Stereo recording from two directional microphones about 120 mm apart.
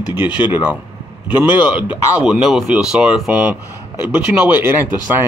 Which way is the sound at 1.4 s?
15° right (ahead or behind).